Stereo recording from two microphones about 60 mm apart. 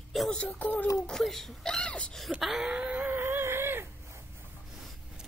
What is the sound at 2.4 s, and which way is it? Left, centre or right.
Speech, centre.